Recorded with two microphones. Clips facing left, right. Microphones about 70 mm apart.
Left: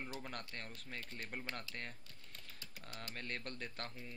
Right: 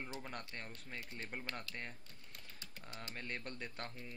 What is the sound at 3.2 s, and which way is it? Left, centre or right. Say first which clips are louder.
Speech: even; centre.